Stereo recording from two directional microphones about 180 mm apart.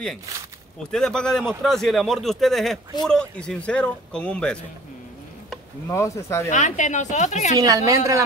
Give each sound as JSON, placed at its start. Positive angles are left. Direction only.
{"t": 0.9, "sound": "speech", "side_deg": 5}
{"t": 5.9, "sound": "speech", "side_deg": 15}
{"t": 6.5, "sound": "a woman's voice", "side_deg": 40}
{"t": 7.5, "sound": "a woman's voice", "side_deg": -20}